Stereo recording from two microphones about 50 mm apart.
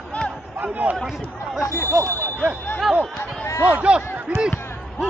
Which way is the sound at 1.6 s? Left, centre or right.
Left.